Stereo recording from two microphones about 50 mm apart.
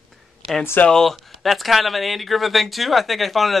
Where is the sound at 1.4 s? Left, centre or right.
Centre.